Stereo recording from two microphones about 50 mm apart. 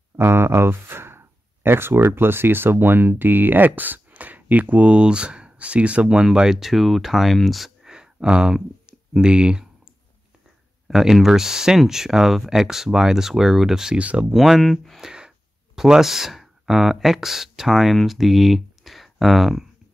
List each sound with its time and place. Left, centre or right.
0.2 s speech: right; by 7.7 s centre
7.8 s a sound: centre
9.1 s speech: centre
10.9 s speech: centre
13.9 s speech: right
14.3 s speech: centre
14.6 s speech: centre
15.0 s speech: centre